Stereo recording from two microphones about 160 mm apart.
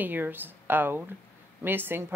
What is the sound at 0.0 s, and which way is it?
Speech, 10° right (ahead or behind).